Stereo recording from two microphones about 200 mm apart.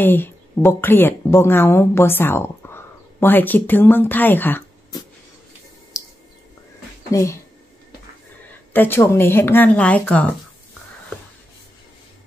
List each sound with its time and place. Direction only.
0.0 s a woman's voice: 10° left (ahead or behind)
5.9 s a sound: 15° left (ahead or behind)
7.1 s speech: 15° left (ahead or behind)
8.7 s speech: 10° left (ahead or behind)